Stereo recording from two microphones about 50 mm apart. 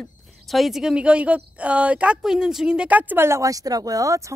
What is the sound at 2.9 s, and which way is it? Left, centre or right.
Speech, right.